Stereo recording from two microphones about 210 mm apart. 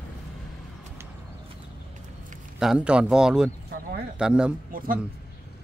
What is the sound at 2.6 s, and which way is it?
Speech, 5° right (ahead or behind).